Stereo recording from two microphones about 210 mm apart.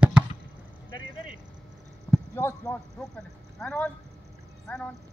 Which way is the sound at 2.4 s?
10° left (ahead or behind).